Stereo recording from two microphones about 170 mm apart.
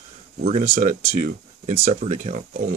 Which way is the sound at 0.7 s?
50° right (ahead or behind).